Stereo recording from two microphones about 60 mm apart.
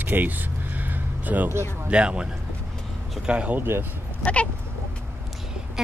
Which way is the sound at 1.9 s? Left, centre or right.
Centre.